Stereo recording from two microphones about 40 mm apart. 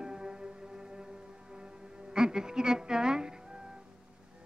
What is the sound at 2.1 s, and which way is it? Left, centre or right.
Speech, centre.